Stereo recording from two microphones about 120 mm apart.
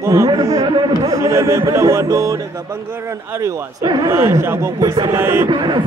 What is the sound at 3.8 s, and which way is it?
Speech, 40° right (ahead or behind).